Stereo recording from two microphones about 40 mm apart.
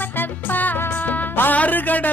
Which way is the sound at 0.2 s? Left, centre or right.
Left.